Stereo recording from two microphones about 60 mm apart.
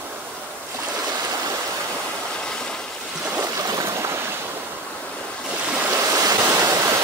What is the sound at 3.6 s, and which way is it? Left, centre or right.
Stream, right.